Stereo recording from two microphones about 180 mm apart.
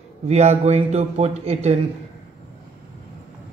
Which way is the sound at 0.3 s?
35° right (ahead or behind).